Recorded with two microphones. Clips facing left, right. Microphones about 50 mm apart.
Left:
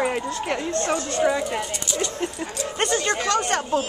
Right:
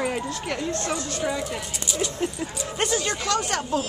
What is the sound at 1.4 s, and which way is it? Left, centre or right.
Speech, centre.